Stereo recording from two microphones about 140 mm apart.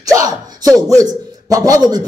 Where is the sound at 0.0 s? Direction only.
25° right (ahead or behind).